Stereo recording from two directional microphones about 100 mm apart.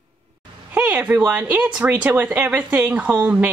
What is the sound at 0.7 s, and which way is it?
Speech, 15° right (ahead or behind).